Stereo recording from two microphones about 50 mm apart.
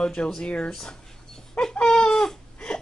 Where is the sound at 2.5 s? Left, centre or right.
Centre.